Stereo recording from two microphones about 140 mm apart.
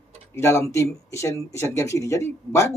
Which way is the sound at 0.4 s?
20° left (ahead or behind).